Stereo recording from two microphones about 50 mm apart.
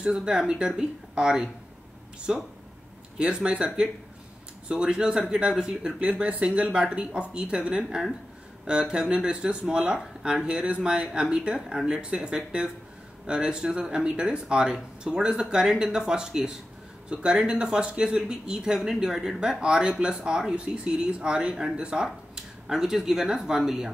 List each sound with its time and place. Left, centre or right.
0.0 s speech: centre